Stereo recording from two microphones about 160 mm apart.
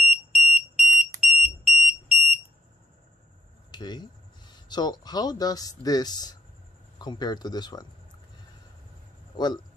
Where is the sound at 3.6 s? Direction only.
25° left (ahead or behind).